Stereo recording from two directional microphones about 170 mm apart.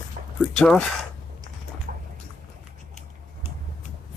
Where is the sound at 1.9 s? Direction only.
60° right (ahead or behind).